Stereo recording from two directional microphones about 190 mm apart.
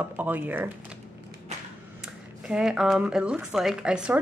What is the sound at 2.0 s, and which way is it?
Speech, 5° right (ahead or behind).